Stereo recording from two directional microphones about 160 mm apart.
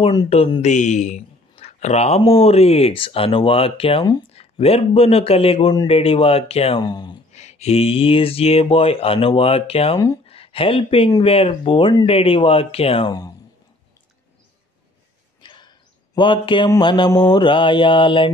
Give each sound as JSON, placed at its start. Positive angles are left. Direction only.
{"t": 0.0, "sound": "speech", "side_deg": 25}
{"t": 0.6, "sound": "speech", "side_deg": 50}
{"t": 6.8, "sound": "speech", "side_deg": 25}
{"t": 7.3, "sound": "speech", "side_deg": 45}
{"t": 10.2, "sound": "a sound", "side_deg": 35}
{"t": 11.2, "sound": "speech", "side_deg": 35}
{"t": 15.4, "sound": "a sound", "side_deg": 30}
{"t": 16.2, "sound": "speech", "side_deg": 30}